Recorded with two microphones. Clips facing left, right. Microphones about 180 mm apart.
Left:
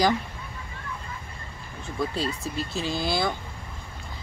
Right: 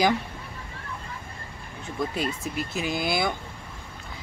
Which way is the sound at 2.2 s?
15° right (ahead or behind).